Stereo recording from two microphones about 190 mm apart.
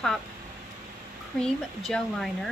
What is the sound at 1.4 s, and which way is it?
Speech, centre (ahead or behind).